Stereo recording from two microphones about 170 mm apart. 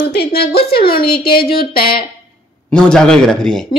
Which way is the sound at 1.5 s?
60° left (ahead or behind).